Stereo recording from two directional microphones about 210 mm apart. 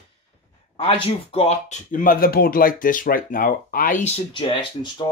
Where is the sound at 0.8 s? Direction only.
25° left (ahead or behind).